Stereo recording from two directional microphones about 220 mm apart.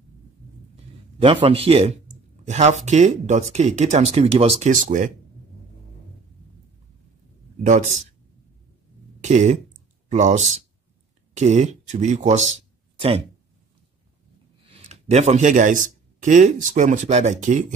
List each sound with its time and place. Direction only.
1.2 s a man's voice: 25° right (ahead or behind)
7.6 s speech: 35° right (ahead or behind)
9.2 s speech: 35° right (ahead or behind)
14.7 s speech: 30° right (ahead or behind)